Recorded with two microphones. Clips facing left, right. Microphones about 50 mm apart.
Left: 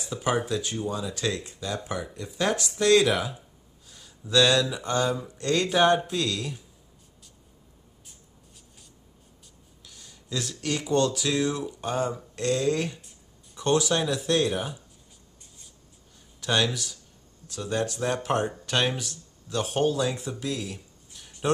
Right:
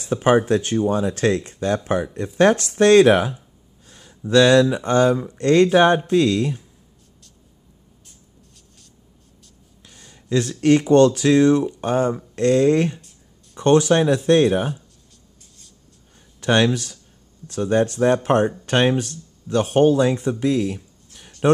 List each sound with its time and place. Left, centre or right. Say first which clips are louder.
0.0 s speech: right 10 dB; right
3.8 s a sound: right 5 dB; right
4.3 s speech: right 8 dB; right
9.8 s speech: right 13 dB; right
16.3 s speech: right 8 dB; right